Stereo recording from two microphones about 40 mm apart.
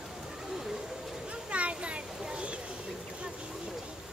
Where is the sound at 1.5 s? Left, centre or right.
Right.